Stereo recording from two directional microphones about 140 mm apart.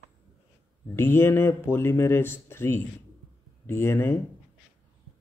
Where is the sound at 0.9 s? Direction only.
15° left (ahead or behind).